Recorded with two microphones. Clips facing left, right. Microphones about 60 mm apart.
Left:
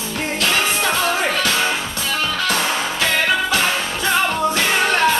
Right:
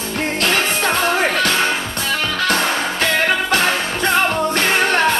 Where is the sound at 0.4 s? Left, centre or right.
Right.